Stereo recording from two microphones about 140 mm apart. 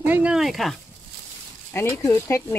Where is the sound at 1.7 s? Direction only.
20° left (ahead or behind).